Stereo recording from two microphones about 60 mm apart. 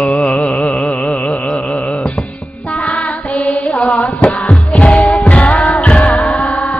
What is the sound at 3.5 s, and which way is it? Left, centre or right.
Mantra, centre.